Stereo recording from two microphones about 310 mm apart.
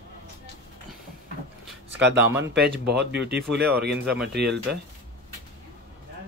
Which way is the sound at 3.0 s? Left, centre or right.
Right.